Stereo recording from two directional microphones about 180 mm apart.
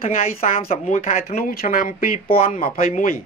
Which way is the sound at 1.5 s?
55° left (ahead or behind).